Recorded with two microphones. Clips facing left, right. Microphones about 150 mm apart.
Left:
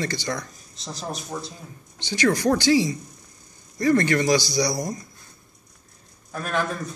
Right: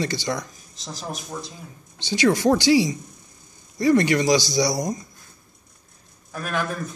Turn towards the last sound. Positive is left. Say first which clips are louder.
# left 1 dB
turn(degrees=-5)  # may be behind; listen again after turning